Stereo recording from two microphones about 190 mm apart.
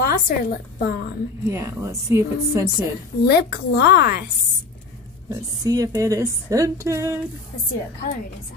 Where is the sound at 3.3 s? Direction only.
55° left (ahead or behind).